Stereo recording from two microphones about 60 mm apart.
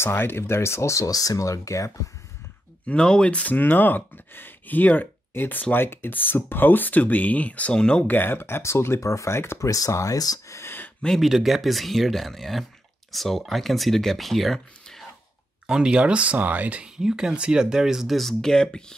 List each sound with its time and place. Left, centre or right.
0.0 s speech: left
1.0 s speech: left
2.9 s speech: centre
8.1 s speech: left
9.6 s speech: left
10.6 s a sound: left
11.1 s speech: centre
15.6 s speech: centre